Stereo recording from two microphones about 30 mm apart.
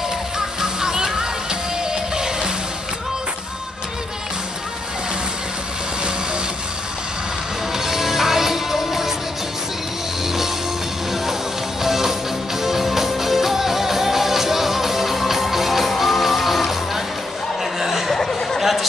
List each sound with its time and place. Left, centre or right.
0.4 s music: centre
7.7 s music: centre
11.8 s music: centre
17.7 s a sound: centre
18.1 s a sound: centre
18.6 s chatter: centre